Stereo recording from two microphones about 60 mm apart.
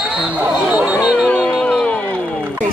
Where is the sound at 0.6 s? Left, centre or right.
Centre.